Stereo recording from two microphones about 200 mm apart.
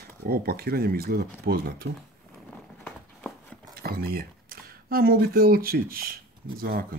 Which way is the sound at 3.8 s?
50° right (ahead or behind).